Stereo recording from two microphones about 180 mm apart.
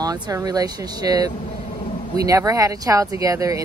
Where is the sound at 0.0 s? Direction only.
20° right (ahead or behind).